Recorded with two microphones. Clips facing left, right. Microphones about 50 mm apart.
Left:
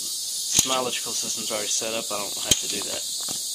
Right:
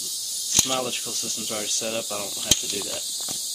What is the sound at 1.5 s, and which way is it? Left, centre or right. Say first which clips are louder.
Speech: left 1 dB; centre.